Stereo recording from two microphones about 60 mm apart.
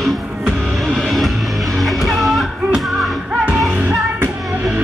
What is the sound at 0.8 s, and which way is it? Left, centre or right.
Music, centre.